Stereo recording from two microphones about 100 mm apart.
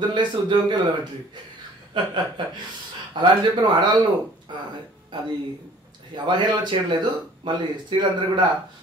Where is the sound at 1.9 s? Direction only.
50° right (ahead or behind).